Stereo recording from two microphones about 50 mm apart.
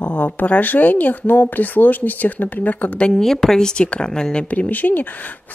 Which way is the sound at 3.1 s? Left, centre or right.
Centre.